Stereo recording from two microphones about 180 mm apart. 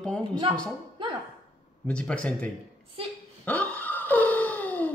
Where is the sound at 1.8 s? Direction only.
5° left (ahead or behind).